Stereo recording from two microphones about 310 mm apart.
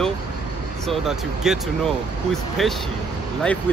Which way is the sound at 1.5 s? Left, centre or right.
Centre.